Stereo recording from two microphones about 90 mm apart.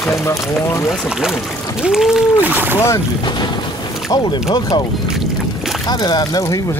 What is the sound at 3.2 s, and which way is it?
Speech, 55° left (ahead or behind).